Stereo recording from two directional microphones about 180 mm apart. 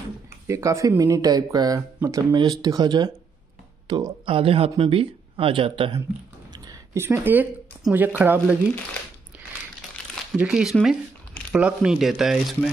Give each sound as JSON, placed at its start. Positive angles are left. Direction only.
{"t": 0.5, "sound": "speech", "side_deg": -15}
{"t": 6.7, "sound": "speech", "side_deg": -15}
{"t": 10.3, "sound": "speech", "side_deg": -5}